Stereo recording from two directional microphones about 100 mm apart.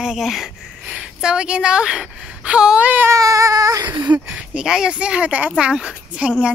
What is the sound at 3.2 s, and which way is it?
Baby cry, 35° right (ahead or behind).